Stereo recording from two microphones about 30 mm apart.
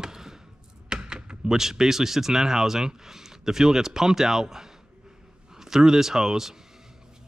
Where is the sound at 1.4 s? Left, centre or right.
Centre.